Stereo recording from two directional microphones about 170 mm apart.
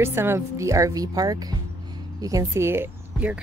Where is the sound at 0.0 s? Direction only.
15° right (ahead or behind).